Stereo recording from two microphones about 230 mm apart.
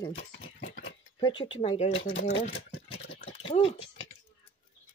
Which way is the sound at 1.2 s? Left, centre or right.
Centre.